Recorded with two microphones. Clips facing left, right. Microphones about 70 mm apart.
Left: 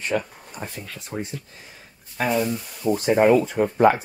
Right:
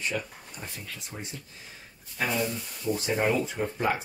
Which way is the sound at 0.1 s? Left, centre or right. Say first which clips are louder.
Left 8 dB; left.